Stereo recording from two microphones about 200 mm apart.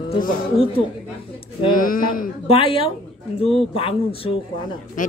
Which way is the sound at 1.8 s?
45° left (ahead or behind).